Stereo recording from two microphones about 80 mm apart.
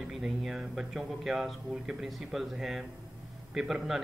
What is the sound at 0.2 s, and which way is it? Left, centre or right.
Speech, centre.